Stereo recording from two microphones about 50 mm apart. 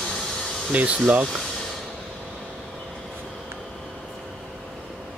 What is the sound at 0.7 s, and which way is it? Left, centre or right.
Speech, right.